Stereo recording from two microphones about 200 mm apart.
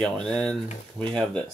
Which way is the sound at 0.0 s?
5° left (ahead or behind).